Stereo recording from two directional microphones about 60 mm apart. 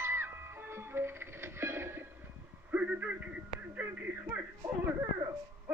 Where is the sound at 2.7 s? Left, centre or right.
Right.